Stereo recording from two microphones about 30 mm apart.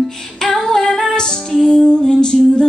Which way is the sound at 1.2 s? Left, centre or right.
Left.